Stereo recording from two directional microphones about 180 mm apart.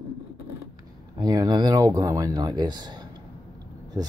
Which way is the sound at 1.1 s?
20° right (ahead or behind).